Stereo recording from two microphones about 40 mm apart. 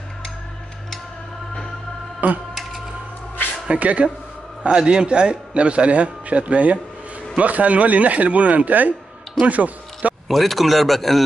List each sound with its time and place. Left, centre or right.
2.1 s music: right
3.5 s a sound: right
3.8 s speech: right
4.6 s a man's voice: right
10.2 s a man's voice: centre